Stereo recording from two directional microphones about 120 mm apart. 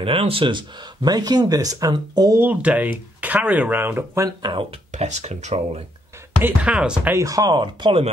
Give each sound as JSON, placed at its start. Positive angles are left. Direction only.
{"t": 0.0, "sound": "speech", "side_deg": -50}
{"t": 2.3, "sound": "speech", "side_deg": -15}
{"t": 4.4, "sound": "speech", "side_deg": -45}
{"t": 4.9, "sound": "speech", "side_deg": -70}
{"t": 6.4, "sound": "speech", "side_deg": -10}
{"t": 7.2, "sound": "speech", "side_deg": -30}